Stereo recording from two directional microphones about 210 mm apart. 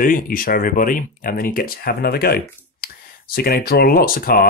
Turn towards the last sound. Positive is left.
turn(degrees=45)  # may be behind; listen again after turning